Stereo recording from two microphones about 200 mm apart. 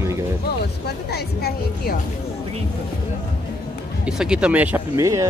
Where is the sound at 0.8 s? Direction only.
50° left (ahead or behind).